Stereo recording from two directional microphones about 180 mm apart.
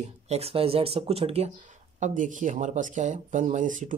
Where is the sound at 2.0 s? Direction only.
45° right (ahead or behind).